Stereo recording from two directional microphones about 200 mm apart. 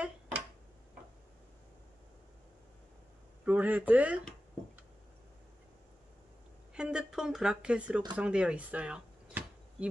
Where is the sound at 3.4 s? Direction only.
10° right (ahead or behind).